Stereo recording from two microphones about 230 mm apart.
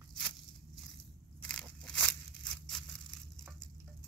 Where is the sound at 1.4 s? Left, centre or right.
Centre.